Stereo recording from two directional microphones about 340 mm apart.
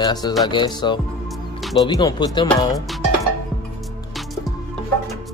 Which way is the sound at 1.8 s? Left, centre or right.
Centre.